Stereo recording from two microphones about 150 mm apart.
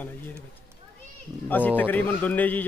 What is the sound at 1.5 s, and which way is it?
Speech, 10° left (ahead or behind).